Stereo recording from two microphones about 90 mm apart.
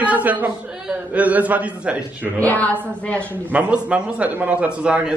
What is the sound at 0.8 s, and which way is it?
A man's voice, 15° right (ahead or behind).